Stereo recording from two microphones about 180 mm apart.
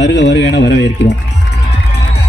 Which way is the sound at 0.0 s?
80° left.